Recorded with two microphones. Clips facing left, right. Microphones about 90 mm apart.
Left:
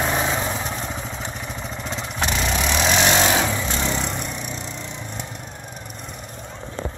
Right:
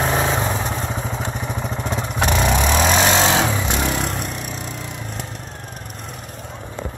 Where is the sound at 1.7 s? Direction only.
45° right (ahead or behind).